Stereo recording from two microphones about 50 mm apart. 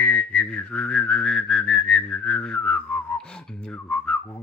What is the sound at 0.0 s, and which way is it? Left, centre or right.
Whistling, left.